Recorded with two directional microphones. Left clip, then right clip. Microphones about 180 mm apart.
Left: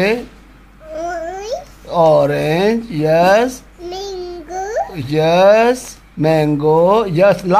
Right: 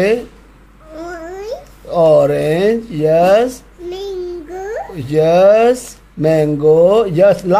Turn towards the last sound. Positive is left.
turn(degrees=-5)  # may be behind; listen again after turning